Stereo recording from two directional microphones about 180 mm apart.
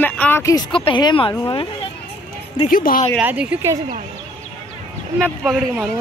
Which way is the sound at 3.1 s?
5° right (ahead or behind).